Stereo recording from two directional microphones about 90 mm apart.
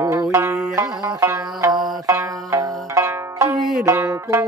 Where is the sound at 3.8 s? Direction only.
35° right (ahead or behind).